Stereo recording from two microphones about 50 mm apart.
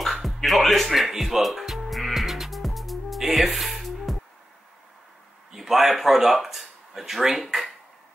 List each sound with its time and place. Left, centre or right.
0.0 s music: centre
5.5 s speech: centre